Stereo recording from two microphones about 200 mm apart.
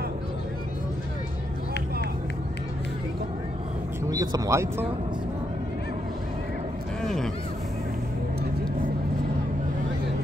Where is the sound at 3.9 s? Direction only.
20° right (ahead or behind).